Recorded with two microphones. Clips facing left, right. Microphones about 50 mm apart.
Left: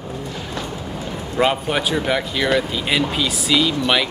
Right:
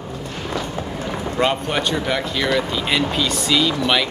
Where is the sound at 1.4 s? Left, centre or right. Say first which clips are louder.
Left 2 dB; centre.